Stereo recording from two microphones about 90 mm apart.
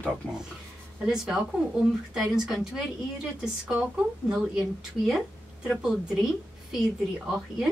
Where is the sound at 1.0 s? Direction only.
5° right (ahead or behind).